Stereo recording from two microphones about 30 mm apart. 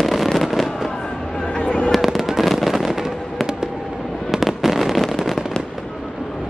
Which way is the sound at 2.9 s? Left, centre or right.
Centre.